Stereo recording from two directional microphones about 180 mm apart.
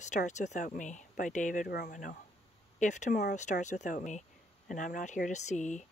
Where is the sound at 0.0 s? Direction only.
40° left (ahead or behind).